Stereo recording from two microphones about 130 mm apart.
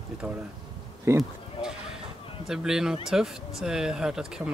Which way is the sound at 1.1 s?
20° right (ahead or behind).